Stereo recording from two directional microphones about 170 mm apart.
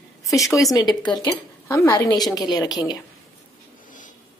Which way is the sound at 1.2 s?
20° left (ahead or behind).